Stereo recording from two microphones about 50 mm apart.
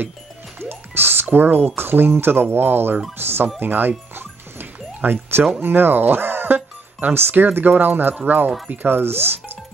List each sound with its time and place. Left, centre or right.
0.6 s music: right
1.8 s speech: right
4.1 s music: right
5.6 s speech: right